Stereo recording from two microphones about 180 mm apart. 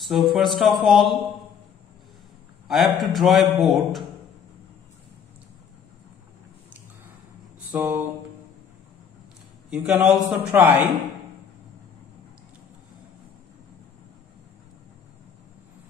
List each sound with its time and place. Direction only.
0.0 s a man's voice: centre (ahead or behind)
2.7 s a man's voice: centre (ahead or behind)
7.7 s a sound: 15° right (ahead or behind)
9.7 s a man's voice: 5° right (ahead or behind)